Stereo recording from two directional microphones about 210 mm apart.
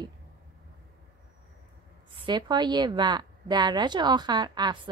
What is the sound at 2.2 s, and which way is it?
A woman's voice, 20° right (ahead or behind).